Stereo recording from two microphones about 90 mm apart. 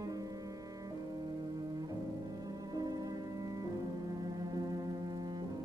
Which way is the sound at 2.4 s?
45° right (ahead or behind).